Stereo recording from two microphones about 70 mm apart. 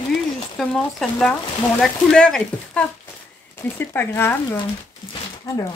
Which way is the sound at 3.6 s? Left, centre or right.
Left.